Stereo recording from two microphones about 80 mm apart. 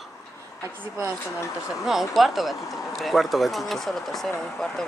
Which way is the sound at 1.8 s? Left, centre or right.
Centre.